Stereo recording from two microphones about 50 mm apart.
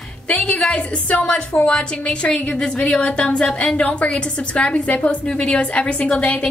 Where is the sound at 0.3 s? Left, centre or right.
Left.